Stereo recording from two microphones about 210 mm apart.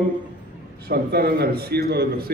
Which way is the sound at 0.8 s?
50° right (ahead or behind).